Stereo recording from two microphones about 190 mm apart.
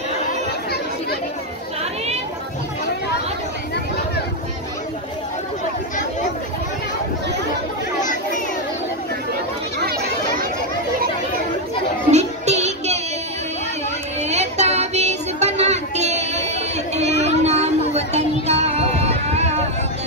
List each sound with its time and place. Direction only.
12.1 s child singing: 35° right (ahead or behind)
14.2 s child singing: 35° right (ahead or behind)